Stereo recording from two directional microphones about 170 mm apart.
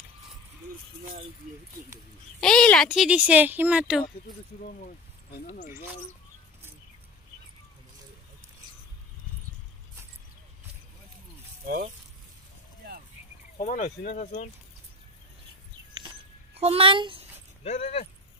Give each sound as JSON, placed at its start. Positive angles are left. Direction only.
{"t": 2.4, "sound": "speech", "side_deg": 5}
{"t": 5.3, "sound": "speech", "side_deg": 65}
{"t": 11.6, "sound": "speech", "side_deg": -60}
{"t": 13.6, "sound": "speech", "side_deg": 50}
{"t": 16.0, "sound": "a sound", "side_deg": -30}
{"t": 16.5, "sound": "a woman's voice", "side_deg": -35}
{"t": 17.6, "sound": "speech", "side_deg": 40}